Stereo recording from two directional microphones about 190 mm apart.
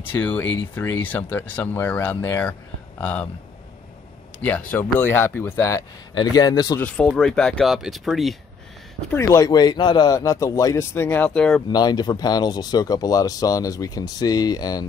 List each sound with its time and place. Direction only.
0.2 s speech: 10° left (ahead or behind)
4.4 s speech: 10° left (ahead or behind)
6.9 s speech: 5° left (ahead or behind)
9.1 s speech: 15° left (ahead or behind)
11.7 s speech: 20° left (ahead or behind)